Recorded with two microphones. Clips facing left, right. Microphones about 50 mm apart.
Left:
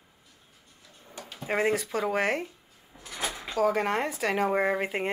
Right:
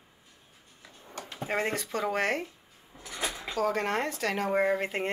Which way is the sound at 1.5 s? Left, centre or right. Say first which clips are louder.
Left 4 dB; centre.